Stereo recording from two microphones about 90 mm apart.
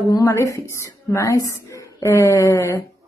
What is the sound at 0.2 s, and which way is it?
A woman's voice, 35° left (ahead or behind).